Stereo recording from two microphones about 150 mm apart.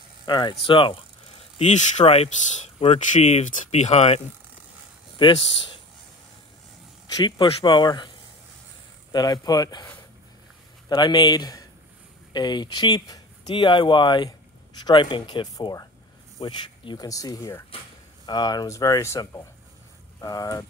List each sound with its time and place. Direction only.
0.3 s speech: 30° left (ahead or behind)
1.6 s speech: 50° left (ahead or behind)
5.2 s speech: 35° left (ahead or behind)
7.2 s speech: 30° left (ahead or behind)
9.1 s speech: 30° left (ahead or behind)
10.9 s speech: 30° left (ahead or behind)
18.2 s speech: 25° left (ahead or behind)